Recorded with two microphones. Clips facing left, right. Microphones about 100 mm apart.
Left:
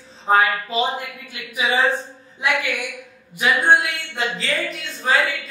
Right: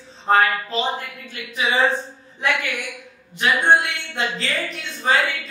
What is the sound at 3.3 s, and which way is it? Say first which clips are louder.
Speech: even; 5° left (ahead or behind).